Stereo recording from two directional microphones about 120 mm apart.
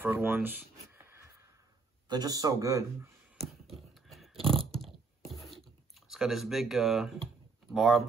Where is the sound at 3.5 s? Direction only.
Centre (ahead or behind).